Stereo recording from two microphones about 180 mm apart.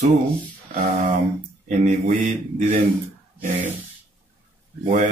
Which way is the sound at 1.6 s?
40° right (ahead or behind).